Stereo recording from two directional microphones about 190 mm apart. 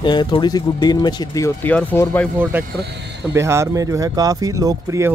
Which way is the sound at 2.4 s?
10° right (ahead or behind).